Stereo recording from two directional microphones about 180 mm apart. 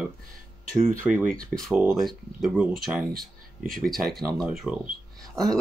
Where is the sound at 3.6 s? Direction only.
55° right (ahead or behind).